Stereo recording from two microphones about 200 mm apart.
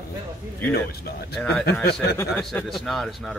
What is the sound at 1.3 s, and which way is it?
Speech, 5° left (ahead or behind).